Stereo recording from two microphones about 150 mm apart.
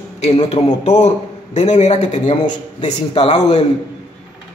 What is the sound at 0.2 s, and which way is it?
A man's voice, 40° left (ahead or behind).